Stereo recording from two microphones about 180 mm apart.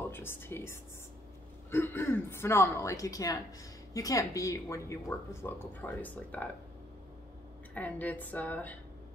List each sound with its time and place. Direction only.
0.0 s speech: 10° left (ahead or behind)
7.7 s speech: 10° left (ahead or behind)